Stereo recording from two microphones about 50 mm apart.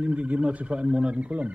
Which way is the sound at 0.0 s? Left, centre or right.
Right.